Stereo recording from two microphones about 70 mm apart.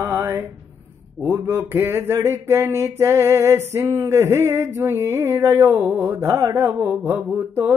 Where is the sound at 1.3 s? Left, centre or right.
Right.